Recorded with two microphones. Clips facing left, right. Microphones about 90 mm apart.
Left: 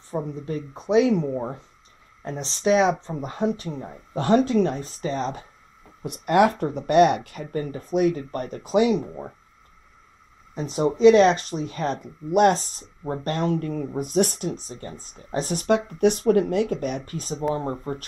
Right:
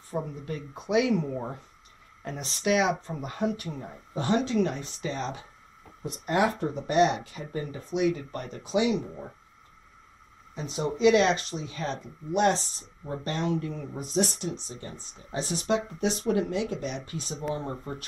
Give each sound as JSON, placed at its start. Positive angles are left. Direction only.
{"t": 0.1, "sound": "speech", "side_deg": 30}
{"t": 4.1, "sound": "speech", "side_deg": 55}
{"t": 6.0, "sound": "speech", "side_deg": 65}
{"t": 10.5, "sound": "speech", "side_deg": 40}